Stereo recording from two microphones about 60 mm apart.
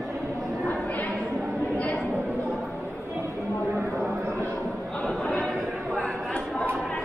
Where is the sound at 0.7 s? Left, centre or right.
Left.